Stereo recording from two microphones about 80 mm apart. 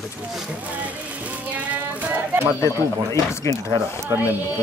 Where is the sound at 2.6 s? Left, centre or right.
Left.